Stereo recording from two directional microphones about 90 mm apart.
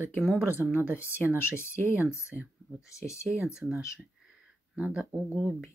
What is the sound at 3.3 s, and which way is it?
Speech, 5° right (ahead or behind).